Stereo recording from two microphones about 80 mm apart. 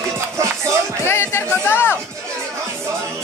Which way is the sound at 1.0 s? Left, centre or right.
Left.